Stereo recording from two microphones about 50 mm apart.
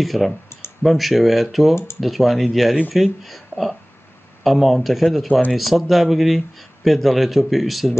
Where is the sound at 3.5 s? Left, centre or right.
Left.